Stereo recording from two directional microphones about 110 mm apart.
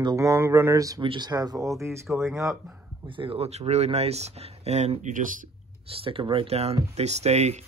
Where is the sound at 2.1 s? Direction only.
Centre (ahead or behind).